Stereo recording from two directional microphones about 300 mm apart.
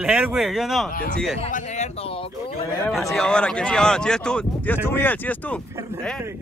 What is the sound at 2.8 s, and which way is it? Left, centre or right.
Speech, centre.